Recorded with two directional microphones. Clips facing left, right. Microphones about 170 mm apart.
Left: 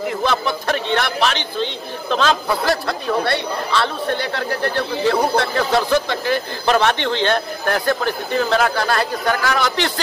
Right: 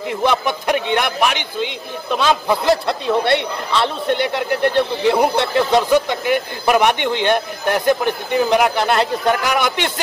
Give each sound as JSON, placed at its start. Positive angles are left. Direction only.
{"t": 0.2, "sound": "speech", "side_deg": -15}